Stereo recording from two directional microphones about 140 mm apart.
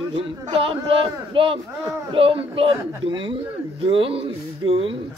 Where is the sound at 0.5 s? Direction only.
40° right (ahead or behind).